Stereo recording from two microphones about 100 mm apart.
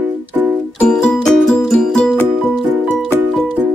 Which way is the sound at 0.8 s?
10° left (ahead or behind).